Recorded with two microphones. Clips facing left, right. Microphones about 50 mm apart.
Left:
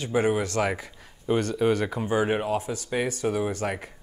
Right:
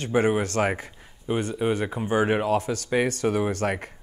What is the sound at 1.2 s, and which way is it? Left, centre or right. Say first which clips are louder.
Speech: left 2 dB; centre.